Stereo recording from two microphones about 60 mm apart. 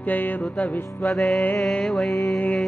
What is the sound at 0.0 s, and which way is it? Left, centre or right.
Music, left.